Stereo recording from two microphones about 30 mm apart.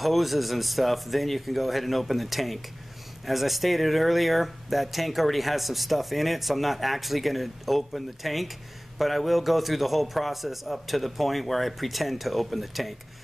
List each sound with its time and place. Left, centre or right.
0.0 s speech: centre